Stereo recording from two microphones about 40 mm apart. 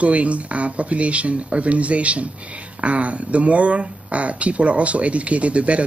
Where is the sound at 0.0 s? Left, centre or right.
Right.